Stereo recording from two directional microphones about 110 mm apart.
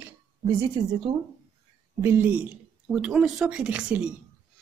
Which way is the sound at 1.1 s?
45° right (ahead or behind).